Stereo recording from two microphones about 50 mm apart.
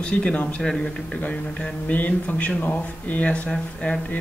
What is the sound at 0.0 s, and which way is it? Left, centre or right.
Speech, left.